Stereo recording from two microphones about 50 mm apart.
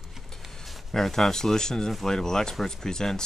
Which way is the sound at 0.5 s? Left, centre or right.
Centre.